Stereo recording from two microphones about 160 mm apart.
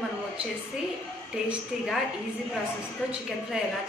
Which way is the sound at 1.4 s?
Centre (ahead or behind).